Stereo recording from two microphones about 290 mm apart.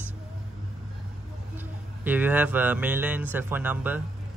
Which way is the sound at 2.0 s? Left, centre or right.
Centre.